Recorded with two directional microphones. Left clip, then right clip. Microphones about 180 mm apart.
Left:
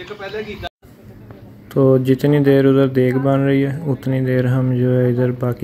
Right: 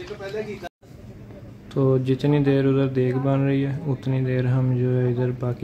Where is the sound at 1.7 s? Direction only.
20° left (ahead or behind).